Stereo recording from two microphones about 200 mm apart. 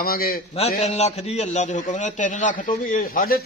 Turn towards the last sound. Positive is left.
turn(degrees=45)  # may be behind; listen again after turning